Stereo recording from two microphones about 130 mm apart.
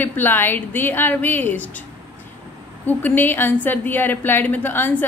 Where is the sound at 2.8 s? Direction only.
15° left (ahead or behind).